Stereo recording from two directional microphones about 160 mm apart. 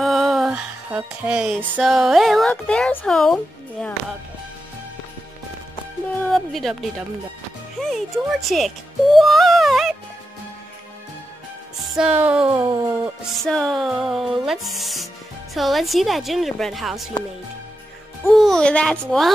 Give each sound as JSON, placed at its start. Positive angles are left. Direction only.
{"t": 0.0, "sound": "music", "side_deg": 0}
{"t": 2.5, "sound": "speech", "side_deg": 5}
{"t": 6.3, "sound": "speech", "side_deg": 0}
{"t": 7.8, "sound": "speech", "side_deg": 0}
{"t": 12.0, "sound": "music", "side_deg": -10}
{"t": 12.4, "sound": "a sound", "side_deg": -30}
{"t": 13.4, "sound": "speech", "side_deg": 5}
{"t": 18.3, "sound": "speech", "side_deg": 0}